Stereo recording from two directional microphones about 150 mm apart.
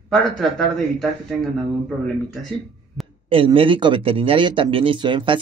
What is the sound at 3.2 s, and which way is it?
Speech, 35° right (ahead or behind).